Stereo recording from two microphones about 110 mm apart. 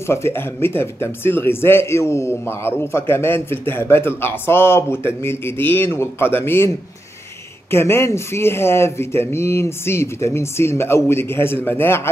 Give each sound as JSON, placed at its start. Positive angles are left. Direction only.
{"t": 0.0, "sound": "speech", "side_deg": 25}
{"t": 7.7, "sound": "speech", "side_deg": 20}